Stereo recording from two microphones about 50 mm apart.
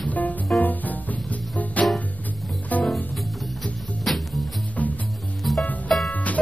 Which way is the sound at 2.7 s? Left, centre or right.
Left.